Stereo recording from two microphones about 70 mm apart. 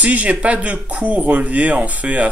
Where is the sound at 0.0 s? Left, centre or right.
Centre.